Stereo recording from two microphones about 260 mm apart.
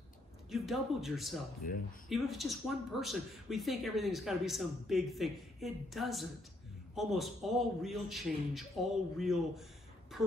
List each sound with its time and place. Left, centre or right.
0.5 s speech: centre
1.6 s speech: left
2.0 s speech: centre